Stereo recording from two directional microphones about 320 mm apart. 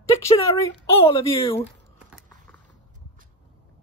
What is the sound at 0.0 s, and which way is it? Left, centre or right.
Speech, centre.